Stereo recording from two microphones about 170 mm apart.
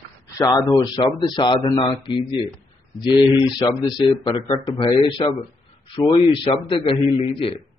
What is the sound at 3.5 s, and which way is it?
A man's voice, 25° left (ahead or behind).